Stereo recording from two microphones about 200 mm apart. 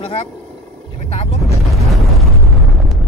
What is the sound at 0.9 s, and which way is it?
Vehicle, 30° left (ahead or behind).